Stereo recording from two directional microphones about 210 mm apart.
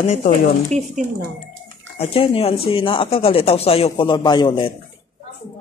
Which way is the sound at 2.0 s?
25° left (ahead or behind).